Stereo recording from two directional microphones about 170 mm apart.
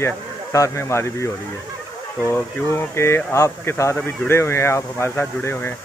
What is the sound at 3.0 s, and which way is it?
Speech, 15° left (ahead or behind).